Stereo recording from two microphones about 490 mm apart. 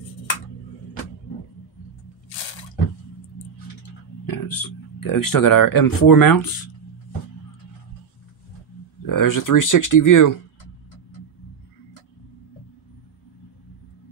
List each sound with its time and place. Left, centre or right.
2.2 s drip: left
4.3 s speech: left
9.0 s speech: left